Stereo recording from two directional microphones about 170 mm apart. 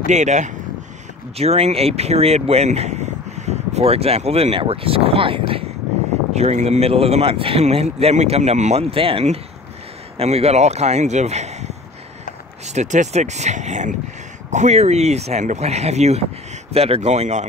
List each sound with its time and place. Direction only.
0.1 s speech: 45° right (ahead or behind)